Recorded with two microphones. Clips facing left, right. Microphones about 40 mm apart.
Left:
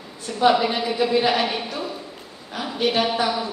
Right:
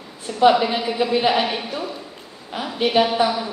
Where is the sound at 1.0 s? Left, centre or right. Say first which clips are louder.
Right 1 dB; right.